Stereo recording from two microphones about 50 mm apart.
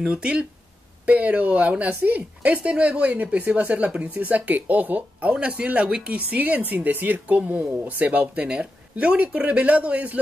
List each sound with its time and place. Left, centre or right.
0.0 s speech: right
2.0 s speech: right
5.3 s speech: centre